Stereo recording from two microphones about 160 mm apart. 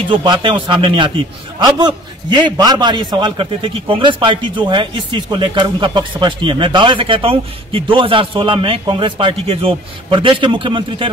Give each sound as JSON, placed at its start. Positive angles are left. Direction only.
{"t": 0.1, "sound": "a man's voice", "side_deg": -30}